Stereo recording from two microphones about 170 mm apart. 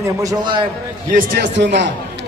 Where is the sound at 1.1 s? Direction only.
75° right (ahead or behind).